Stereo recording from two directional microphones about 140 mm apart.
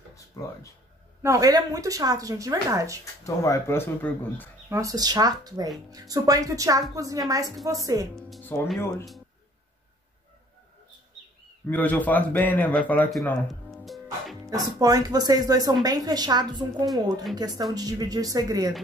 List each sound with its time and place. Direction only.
0.3 s speech: 25° left (ahead or behind)
1.2 s speech: 25° right (ahead or behind)
3.3 s speech: 20° left (ahead or behind)
4.6 s speech: 20° right (ahead or behind)
8.5 s speech: 15° left (ahead or behind)
11.6 s speech: 10° left (ahead or behind)
13.1 s music: centre (ahead or behind)
14.5 s speech: 25° right (ahead or behind)